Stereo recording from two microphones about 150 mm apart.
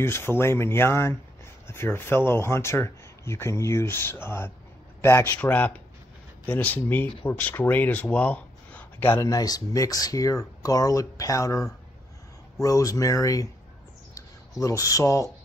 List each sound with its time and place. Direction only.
0.0 s speech: 15° left (ahead or behind)